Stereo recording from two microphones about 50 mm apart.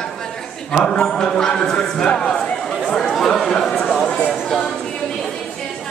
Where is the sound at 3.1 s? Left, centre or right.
Centre.